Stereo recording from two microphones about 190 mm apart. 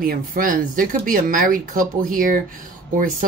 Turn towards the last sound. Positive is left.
turn(degrees=-45)  # may be behind; listen again after turning